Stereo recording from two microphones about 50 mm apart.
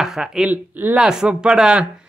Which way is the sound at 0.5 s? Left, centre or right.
Right.